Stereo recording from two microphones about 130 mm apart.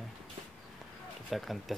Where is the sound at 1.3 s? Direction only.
Centre (ahead or behind).